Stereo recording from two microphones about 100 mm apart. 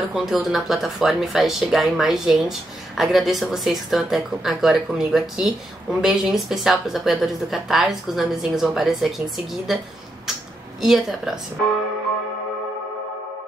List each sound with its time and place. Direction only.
0.1 s speech: 5° right (ahead or behind)
10.8 s speech: 5° right (ahead or behind)